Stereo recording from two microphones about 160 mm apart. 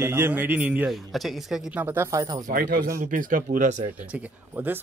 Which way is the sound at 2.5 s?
60° right (ahead or behind).